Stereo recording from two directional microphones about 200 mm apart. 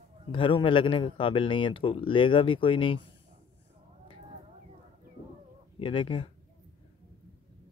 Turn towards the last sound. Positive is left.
turn(degrees=25)  # may be behind; listen again after turning